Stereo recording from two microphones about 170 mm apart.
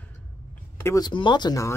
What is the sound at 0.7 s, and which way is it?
Speech, 15° left (ahead or behind).